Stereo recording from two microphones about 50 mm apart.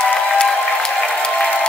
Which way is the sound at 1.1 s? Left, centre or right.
Left.